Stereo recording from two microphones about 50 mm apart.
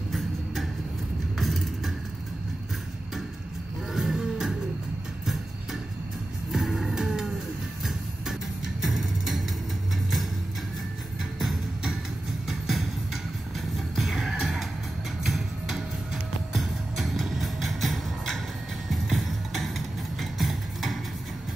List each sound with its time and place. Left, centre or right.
1.4 s music: centre
3.9 s music: centre
5.2 s a sound: centre
6.5 s music: centre
11.3 s music: centre